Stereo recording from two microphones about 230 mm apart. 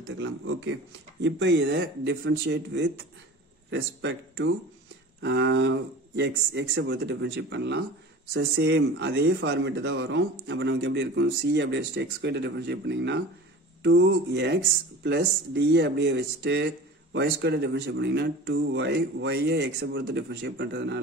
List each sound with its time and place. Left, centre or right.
0.1 s speech: right